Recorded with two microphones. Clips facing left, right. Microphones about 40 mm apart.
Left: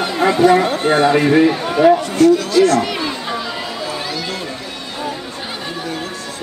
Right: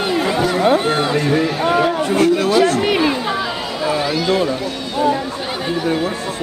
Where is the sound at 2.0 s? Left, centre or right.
Right.